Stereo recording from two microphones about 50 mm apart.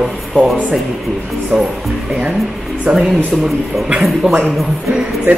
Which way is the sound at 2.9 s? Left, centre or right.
Right.